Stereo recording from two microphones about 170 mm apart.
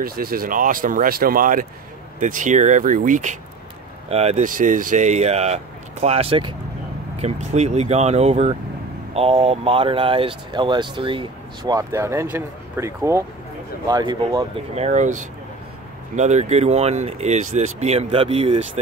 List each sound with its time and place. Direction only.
0.0 s speech: 60° right (ahead or behind); by 4.5 s 40° right (ahead or behind)
4.5 s speech: 50° right (ahead or behind); by 14.5 s 20° right (ahead or behind)
14.8 s speech: 45° right (ahead or behind)